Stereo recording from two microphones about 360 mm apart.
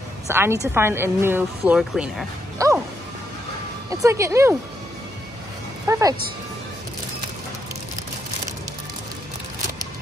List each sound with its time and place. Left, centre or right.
0.3 s speech: centre
3.9 s speech: centre
5.9 s speech: centre